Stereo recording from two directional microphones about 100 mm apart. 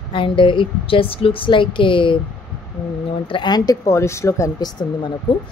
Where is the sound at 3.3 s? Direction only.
50° left (ahead or behind); by 4.5 s 30° left (ahead or behind).